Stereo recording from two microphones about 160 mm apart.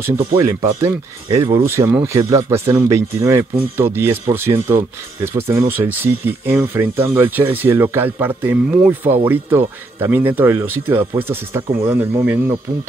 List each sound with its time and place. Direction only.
0.4 s speech: 20° right (ahead or behind)